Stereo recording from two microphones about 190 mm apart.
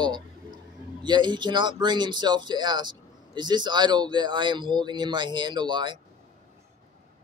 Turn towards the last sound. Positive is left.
turn(degrees=-25)  # may be behind; listen again after turning